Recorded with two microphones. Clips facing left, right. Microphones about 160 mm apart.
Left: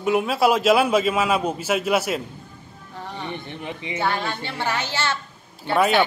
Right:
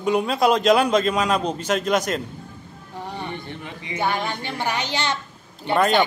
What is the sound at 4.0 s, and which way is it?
A woman's voice, 15° right (ahead or behind).